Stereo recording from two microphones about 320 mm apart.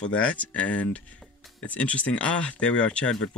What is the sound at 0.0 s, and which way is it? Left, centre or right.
Speech, centre.